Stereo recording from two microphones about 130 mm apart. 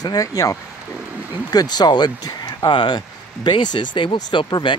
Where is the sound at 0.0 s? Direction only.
25° left (ahead or behind).